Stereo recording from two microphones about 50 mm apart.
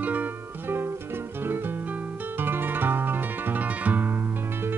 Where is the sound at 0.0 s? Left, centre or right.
Right.